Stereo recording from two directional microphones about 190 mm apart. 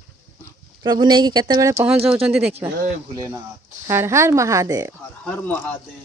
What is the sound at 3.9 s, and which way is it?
A woman's voice, 15° right (ahead or behind).